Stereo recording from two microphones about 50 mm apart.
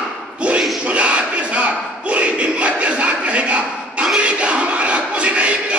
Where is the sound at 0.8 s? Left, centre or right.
Right.